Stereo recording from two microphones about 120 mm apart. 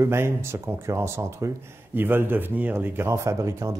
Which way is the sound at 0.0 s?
20° right (ahead or behind).